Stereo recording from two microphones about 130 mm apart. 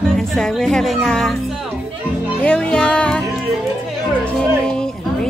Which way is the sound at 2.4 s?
10° left (ahead or behind).